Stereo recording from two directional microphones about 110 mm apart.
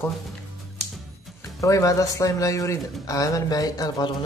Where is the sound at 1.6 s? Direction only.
30° left (ahead or behind).